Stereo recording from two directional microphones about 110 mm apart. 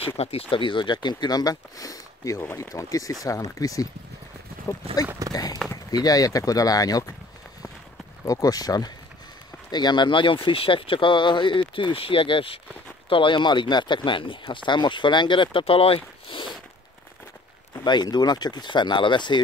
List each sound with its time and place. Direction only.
0.2 s speech: 65° left (ahead or behind); by 3.8 s 30° left (ahead or behind)
5.3 s speech: 35° left (ahead or behind)
8.3 s speech: 35° left (ahead or behind); by 16.5 s 50° left (ahead or behind)
17.8 s speech: 40° left (ahead or behind)